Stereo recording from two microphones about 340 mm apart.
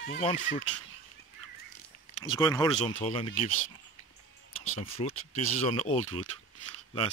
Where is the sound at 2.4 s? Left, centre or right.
Centre.